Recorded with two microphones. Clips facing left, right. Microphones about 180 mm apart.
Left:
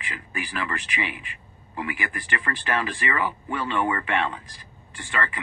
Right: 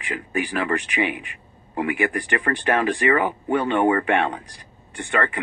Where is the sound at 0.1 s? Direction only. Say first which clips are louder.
Right 9 dB; 55° right (ahead or behind).